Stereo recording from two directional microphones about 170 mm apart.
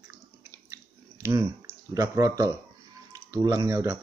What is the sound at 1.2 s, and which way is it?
Speech, 15° right (ahead or behind).